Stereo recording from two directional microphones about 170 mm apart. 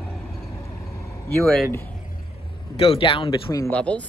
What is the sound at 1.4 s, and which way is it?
Speech, centre (ahead or behind).